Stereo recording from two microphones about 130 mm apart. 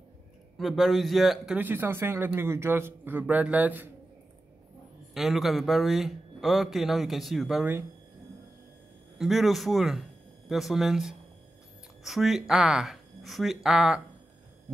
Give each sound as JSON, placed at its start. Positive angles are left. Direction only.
{"t": 0.6, "sound": "a man's voice", "side_deg": 0}
{"t": 1.6, "sound": "a man's voice", "side_deg": -15}
{"t": 5.1, "sound": "a man's voice", "side_deg": 0}
{"t": 9.2, "sound": "a man's voice", "side_deg": 0}